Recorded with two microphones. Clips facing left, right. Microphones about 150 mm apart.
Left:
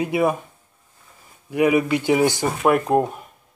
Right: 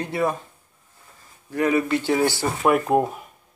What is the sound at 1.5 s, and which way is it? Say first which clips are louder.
Speech: left 3 dB; 10° left (ahead or behind).